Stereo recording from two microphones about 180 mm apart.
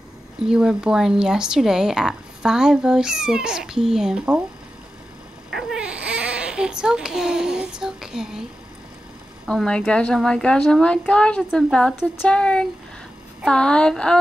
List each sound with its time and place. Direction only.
0.4 s speech: 5° right (ahead or behind)
5.5 s babbling: centre (ahead or behind)
9.5 s speech: 5° left (ahead or behind)